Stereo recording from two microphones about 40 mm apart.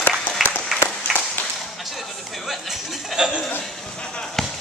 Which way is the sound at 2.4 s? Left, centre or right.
Centre.